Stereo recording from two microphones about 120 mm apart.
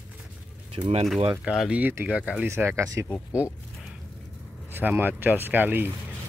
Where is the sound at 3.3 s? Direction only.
10° right (ahead or behind).